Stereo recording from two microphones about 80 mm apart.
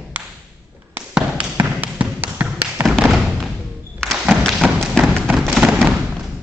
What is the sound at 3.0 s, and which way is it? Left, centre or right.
Thump, centre.